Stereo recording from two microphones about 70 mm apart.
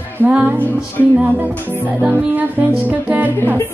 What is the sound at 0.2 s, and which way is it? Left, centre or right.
Music, right.